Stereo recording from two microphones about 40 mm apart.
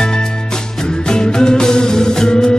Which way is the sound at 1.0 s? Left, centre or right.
Centre.